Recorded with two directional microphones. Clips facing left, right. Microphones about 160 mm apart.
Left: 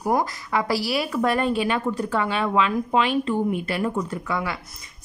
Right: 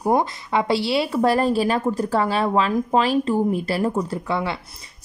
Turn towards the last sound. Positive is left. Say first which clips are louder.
# right 3 dB
turn(degrees=-25)  # may be behind; listen again after turning